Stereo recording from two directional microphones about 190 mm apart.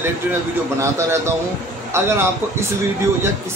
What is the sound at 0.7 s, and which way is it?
Speech, 15° right (ahead or behind).